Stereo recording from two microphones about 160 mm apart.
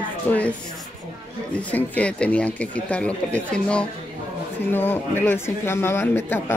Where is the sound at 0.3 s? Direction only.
10° left (ahead or behind).